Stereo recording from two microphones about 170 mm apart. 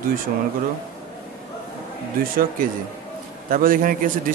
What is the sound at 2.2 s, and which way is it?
A man's voice, 60° right (ahead or behind).